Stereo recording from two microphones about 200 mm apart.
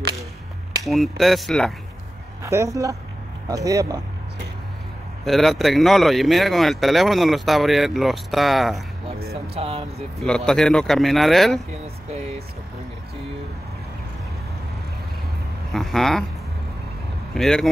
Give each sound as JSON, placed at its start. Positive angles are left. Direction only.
{"t": 0.8, "sound": "speech", "side_deg": 0}
{"t": 2.4, "sound": "speech", "side_deg": -15}
{"t": 5.2, "sound": "speech", "side_deg": 0}
{"t": 9.2, "sound": "music", "side_deg": -50}
{"t": 9.6, "sound": "speech", "side_deg": -30}
{"t": 10.2, "sound": "speech", "side_deg": 5}
{"t": 15.7, "sound": "speech", "side_deg": 0}
{"t": 17.3, "sound": "speech", "side_deg": 0}